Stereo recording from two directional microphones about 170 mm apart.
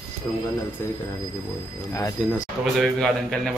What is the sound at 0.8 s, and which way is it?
Speech, 15° left (ahead or behind).